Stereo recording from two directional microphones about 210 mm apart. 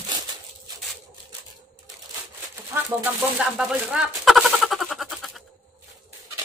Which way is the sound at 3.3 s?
5° right (ahead or behind).